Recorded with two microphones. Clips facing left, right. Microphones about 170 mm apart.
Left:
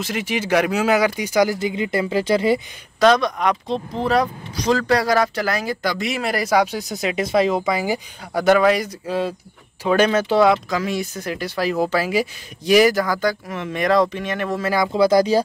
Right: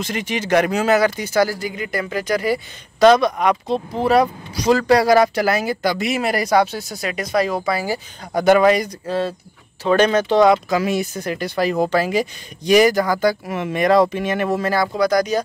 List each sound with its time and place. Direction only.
0.0 s speech: 5° left (ahead or behind); by 2.6 s 25° left (ahead or behind)
3.0 s speech: 5° right (ahead or behind)
6.5 s speech: 10° left (ahead or behind)
8.4 s speech: centre (ahead or behind)
10.7 s speech: 5° right (ahead or behind)
14.7 s speech: 15° left (ahead or behind)
15.0 s speech: 25° left (ahead or behind)